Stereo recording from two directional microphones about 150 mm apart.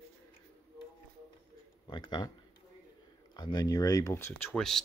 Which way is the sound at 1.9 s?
30° left (ahead or behind).